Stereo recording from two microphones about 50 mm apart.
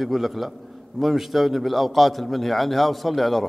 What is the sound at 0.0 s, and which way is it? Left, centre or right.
A man's voice, centre.